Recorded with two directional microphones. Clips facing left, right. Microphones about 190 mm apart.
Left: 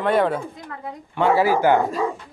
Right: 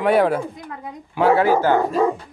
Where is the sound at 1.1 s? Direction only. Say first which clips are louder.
Right 2 dB; centre (ahead or behind).